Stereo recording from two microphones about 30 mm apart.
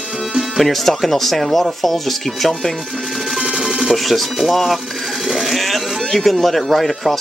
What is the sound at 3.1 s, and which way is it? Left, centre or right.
Music, centre.